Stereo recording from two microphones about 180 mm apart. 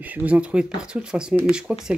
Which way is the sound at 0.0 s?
10° right (ahead or behind).